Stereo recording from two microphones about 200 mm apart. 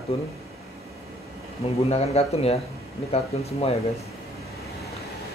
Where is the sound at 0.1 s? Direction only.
30° left (ahead or behind).